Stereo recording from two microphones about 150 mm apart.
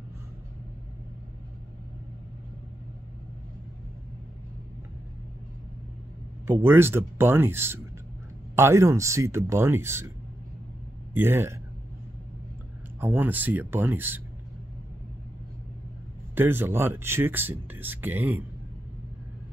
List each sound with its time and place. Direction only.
6.4 s speech: 15° right (ahead or behind)
11.1 s speech: 15° right (ahead or behind)
13.0 s speech: 15° right (ahead or behind)
16.3 s speech: 15° right (ahead or behind)